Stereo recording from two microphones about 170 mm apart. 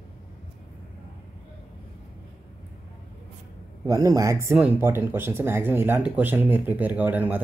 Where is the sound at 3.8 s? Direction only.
15° right (ahead or behind).